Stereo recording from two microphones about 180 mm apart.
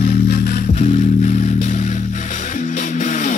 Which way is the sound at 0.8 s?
40° left (ahead or behind).